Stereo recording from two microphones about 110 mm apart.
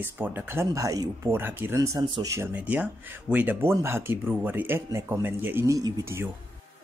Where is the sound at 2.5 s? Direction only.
15° right (ahead or behind).